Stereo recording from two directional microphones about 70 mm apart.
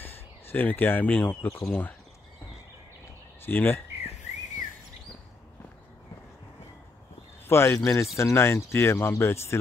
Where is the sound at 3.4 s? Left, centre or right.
Left.